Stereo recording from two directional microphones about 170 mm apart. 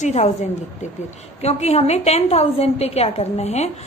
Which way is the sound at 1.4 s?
40° left (ahead or behind).